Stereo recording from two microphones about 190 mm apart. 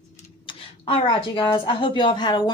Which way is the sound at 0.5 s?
25° left (ahead or behind).